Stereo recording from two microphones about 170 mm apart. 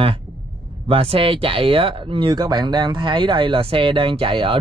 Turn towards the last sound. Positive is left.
turn(degrees=-30)  # may be behind; listen again after turning